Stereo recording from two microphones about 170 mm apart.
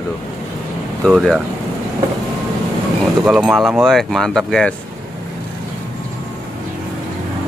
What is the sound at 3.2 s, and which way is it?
Speech, 5° right (ahead or behind).